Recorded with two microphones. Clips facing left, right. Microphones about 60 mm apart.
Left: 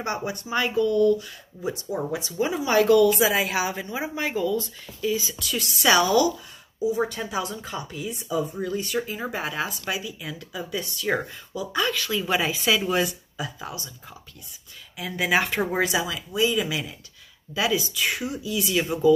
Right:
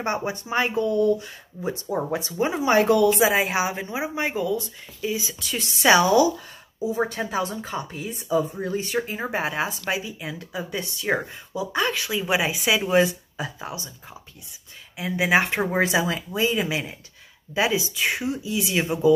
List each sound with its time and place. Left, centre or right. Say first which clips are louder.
0.0 s speech: right 2 dB; right
3.9 s a woman's voice: right 1 dB; centre
12.1 s speech: right 1 dB; centre
15.0 s speech: right 3 dB; right